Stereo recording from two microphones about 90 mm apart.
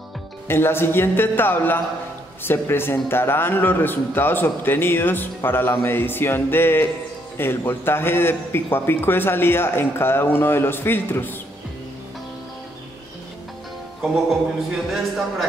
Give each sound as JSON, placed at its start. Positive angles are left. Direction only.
{"t": 0.5, "sound": "a man's voice", "side_deg": 25}
{"t": 14.9, "sound": "a man's voice", "side_deg": 0}